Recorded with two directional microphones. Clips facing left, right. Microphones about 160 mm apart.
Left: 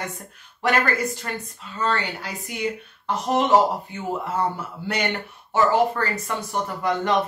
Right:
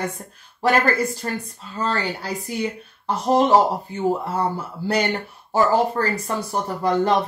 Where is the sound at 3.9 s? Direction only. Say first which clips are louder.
Right 4 dB; 35° right (ahead or behind).